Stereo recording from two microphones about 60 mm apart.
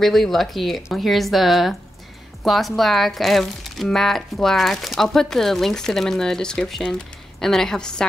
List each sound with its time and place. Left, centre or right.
0.0 s speech: centre